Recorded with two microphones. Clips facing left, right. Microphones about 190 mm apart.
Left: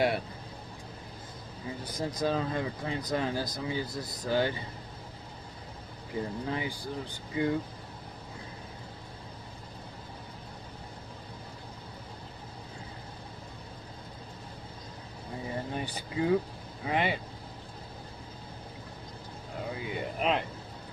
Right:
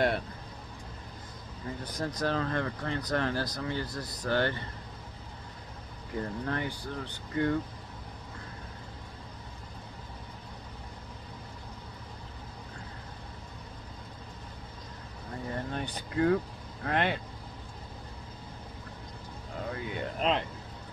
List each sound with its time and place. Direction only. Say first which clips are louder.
1.9 s speech: left 1 dB; 10° left (ahead or behind)
6.1 s speech: even; 10° left (ahead or behind)
15.4 s speech: even; 10° left (ahead or behind)
19.7 s a sound: even; 5° left (ahead or behind)